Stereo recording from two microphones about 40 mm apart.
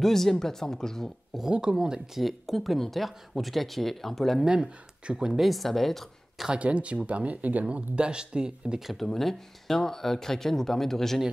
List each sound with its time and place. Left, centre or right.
0.0 s speech: centre
1.5 s speech: right
2.1 s speech: centre
4.5 s speech: right
5.4 s speech: centre
6.5 s speech: right
8.9 s speech: centre